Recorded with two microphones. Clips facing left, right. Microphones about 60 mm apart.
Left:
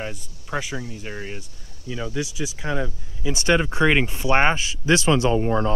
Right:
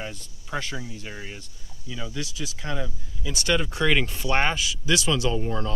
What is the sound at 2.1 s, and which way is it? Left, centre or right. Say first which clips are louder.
Speech: left 6 dB; centre.